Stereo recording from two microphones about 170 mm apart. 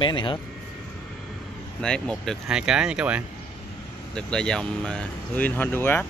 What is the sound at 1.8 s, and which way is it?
Speech, 5° left (ahead or behind).